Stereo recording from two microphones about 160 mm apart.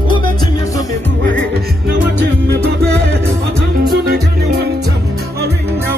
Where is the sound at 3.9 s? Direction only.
85° right.